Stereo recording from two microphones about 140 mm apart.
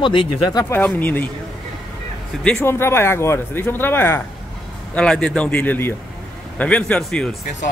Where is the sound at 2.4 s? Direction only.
15° left (ahead or behind).